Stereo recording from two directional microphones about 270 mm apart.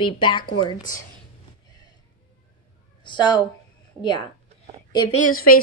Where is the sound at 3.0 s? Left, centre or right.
Centre.